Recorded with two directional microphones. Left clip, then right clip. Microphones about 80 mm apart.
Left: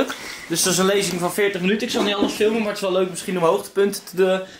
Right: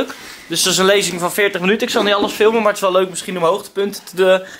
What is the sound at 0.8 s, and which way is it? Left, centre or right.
Speech, right.